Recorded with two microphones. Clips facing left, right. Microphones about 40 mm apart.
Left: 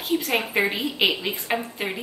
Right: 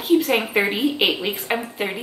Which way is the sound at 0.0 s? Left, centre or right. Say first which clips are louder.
Right 6 dB; centre.